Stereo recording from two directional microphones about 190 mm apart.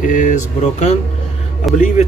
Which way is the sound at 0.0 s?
45° left (ahead or behind).